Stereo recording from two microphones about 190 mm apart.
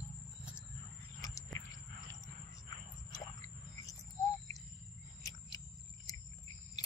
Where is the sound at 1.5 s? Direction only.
15° left (ahead or behind).